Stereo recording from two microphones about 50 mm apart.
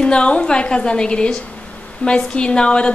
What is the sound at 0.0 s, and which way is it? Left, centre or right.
A woman's voice, left.